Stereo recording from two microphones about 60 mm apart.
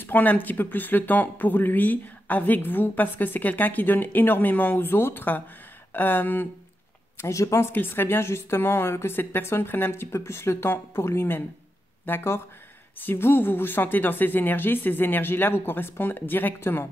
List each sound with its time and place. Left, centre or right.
0.0 s speech: left
7.2 s speech: left
7.7 s speech: left